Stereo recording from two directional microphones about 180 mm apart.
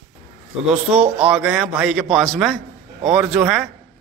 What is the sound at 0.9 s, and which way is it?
Speech, 35° right (ahead or behind).